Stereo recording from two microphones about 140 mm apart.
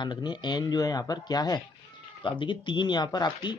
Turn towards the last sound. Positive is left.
turn(degrees=30)  # may be behind; listen again after turning